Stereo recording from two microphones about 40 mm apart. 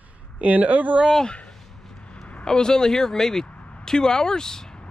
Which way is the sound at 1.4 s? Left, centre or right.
Centre.